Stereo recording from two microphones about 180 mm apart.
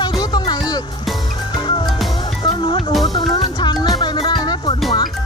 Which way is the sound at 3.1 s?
25° left (ahead or behind).